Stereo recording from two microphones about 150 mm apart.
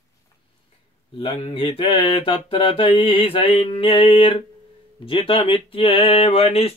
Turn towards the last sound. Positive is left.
turn(degrees=40)  # may be behind; listen again after turning